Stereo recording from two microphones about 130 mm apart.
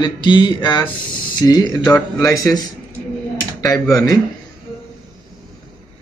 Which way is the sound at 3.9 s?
25° left (ahead or behind).